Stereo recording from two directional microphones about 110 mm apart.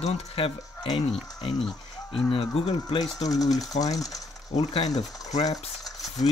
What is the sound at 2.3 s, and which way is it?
Speech, 70° left (ahead or behind).